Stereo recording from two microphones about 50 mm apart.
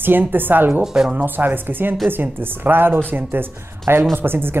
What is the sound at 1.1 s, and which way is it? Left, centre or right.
A woman's voice, right.